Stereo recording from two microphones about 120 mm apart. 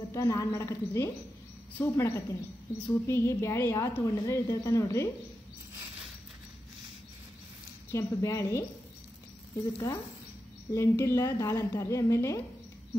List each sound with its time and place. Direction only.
0.1 s a woman's voice: 25° left (ahead or behind)
7.9 s a woman's voice: 25° left (ahead or behind)
9.7 s a woman's voice: 25° left (ahead or behind)